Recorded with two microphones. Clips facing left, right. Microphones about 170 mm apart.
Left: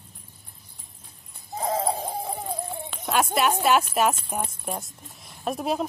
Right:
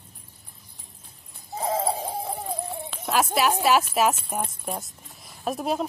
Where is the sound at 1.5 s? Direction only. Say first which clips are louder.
Even; centre (ahead or behind).